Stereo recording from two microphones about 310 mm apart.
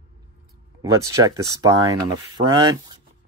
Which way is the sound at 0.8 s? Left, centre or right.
Centre.